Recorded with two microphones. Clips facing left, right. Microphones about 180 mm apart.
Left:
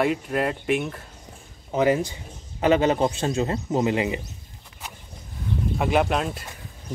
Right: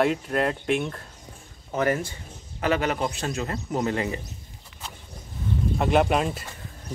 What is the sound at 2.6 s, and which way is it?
Speech, 25° left (ahead or behind).